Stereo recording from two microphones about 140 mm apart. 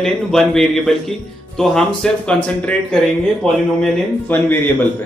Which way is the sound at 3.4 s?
5° left (ahead or behind).